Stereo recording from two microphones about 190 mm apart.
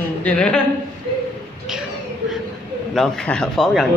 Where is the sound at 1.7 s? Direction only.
Centre (ahead or behind).